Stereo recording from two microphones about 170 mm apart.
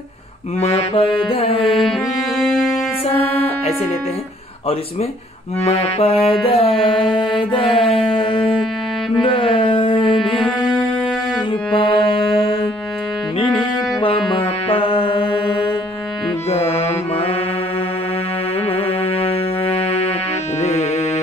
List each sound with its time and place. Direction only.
0.6 s music: 30° left (ahead or behind)
2.4 s music: 10° left (ahead or behind)
5.7 s music: 35° left (ahead or behind)
9.1 s mantra: 30° left (ahead or behind)
10.3 s music: centre (ahead or behind)
11.7 s music: 30° left (ahead or behind)
14.0 s music: 30° left (ahead or behind)
16.4 s music: 35° left (ahead or behind)